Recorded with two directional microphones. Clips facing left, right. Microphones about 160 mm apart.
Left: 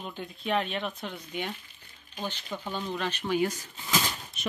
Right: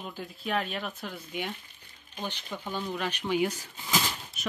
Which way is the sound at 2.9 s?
10° right (ahead or behind).